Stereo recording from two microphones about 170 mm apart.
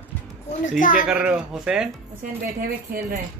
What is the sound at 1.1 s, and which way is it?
Speech, 5° right (ahead or behind).